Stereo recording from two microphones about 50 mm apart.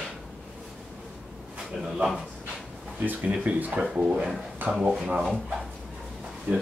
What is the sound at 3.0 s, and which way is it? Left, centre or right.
Speech, right.